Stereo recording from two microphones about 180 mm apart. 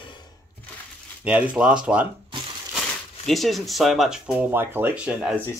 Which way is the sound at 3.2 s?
Centre (ahead or behind).